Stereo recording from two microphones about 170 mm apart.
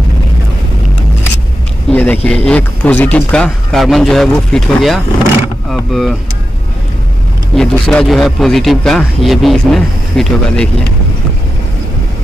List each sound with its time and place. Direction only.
1.9 s speech: 10° left (ahead or behind)
7.5 s speech: 5° left (ahead or behind)